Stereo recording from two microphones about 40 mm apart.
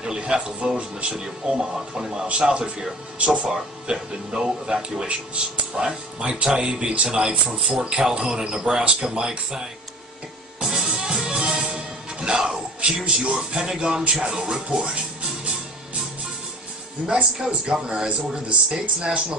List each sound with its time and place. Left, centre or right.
0.0 s speech: centre
1.1 s speech: centre
10.6 s music: centre
13.0 s speech: right
17.5 s speech: right